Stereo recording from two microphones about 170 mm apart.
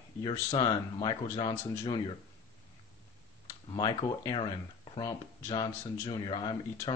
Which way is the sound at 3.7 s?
25° left (ahead or behind).